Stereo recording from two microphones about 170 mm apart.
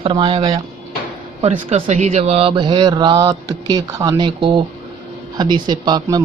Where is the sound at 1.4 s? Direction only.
40° right (ahead or behind).